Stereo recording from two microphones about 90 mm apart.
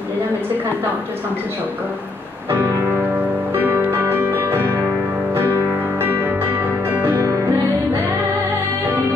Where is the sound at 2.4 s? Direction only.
25° right (ahead or behind).